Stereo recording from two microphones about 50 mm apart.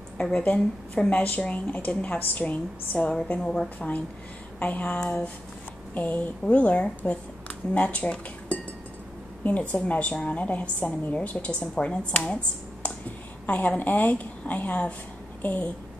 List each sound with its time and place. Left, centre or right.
0.2 s a woman's voice: left
1.1 s a woman's voice: left
3.3 s a woman's voice: centre
4.6 s a woman's voice: left
6.4 s a woman's voice: left
13.5 s a woman's voice: left